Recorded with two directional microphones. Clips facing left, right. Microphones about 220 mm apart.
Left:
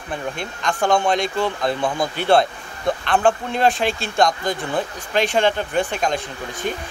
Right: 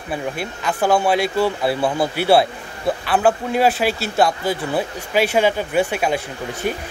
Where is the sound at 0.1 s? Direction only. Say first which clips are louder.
Right 2 dB; 5° right (ahead or behind).